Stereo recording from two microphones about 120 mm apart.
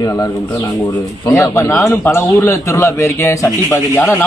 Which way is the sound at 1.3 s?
25° left (ahead or behind).